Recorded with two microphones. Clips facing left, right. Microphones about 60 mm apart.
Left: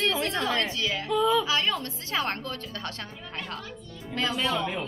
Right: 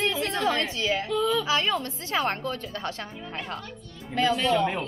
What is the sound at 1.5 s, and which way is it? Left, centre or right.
A woman's voice, right.